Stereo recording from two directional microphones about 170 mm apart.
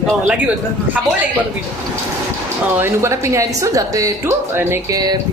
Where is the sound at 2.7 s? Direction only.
15° right (ahead or behind).